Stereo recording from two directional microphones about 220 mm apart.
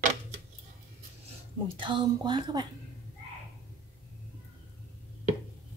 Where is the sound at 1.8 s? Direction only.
20° right (ahead or behind).